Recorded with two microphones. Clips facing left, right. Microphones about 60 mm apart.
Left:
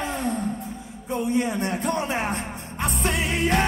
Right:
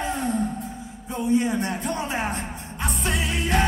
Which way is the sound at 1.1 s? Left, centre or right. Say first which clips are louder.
Right 1 dB; left.